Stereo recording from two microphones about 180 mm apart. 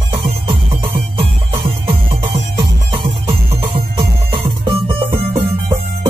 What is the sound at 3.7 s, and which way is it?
Music, 30° right (ahead or behind).